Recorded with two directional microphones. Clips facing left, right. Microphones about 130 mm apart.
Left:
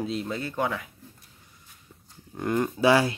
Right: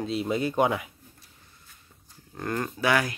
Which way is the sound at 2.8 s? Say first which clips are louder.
Left 4 dB; 30° left (ahead or behind).